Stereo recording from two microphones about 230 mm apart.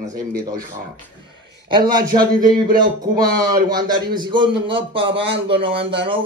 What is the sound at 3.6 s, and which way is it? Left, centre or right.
A man's voice, centre.